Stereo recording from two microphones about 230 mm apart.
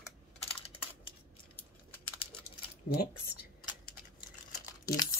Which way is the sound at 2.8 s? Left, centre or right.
Left.